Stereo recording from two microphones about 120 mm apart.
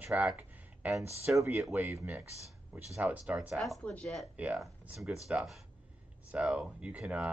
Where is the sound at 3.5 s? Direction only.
Centre (ahead or behind).